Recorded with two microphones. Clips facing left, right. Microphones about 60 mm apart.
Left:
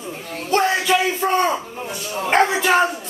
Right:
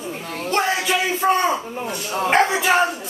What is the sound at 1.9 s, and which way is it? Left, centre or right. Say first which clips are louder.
Speech: right 2 dB; right.